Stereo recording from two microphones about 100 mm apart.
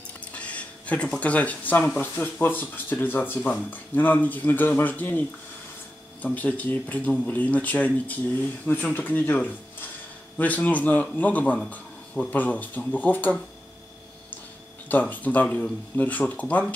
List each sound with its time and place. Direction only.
0.3 s speech: 15° left (ahead or behind)
6.2 s speech: 15° left (ahead or behind)
14.9 s speech: 15° left (ahead or behind)